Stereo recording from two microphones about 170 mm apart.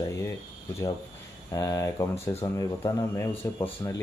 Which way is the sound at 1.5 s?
20° left (ahead or behind).